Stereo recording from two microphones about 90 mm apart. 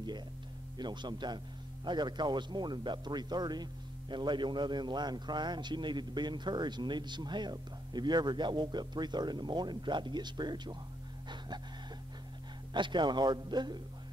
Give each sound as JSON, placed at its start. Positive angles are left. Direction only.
{"t": 0.7, "sound": "a man's voice", "side_deg": -55}
{"t": 11.2, "sound": "music", "side_deg": -55}
{"t": 12.7, "sound": "a man's voice", "side_deg": -60}